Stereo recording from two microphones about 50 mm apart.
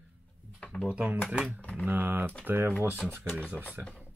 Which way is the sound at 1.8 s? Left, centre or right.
Right.